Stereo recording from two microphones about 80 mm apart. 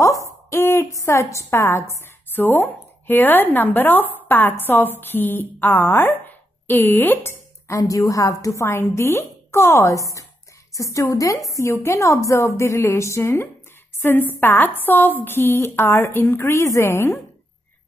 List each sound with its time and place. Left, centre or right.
0.0 s a woman's voice: left
7.6 s a woman's voice: left
13.9 s a woman's voice: left